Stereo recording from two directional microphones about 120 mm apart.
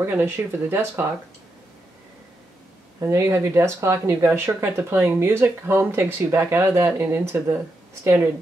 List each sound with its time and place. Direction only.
0.0 s speech: 20° right (ahead or behind)
3.0 s speech: 25° right (ahead or behind)